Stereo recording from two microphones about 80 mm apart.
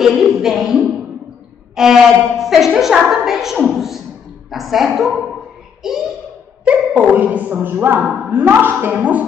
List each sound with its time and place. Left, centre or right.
0.0 s a woman's voice: centre
6.6 s speech: centre